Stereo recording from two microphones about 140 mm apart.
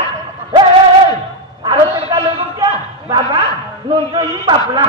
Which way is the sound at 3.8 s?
35° right (ahead or behind).